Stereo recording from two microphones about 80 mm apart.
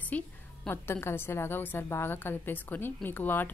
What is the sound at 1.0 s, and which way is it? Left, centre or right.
A woman's voice, left.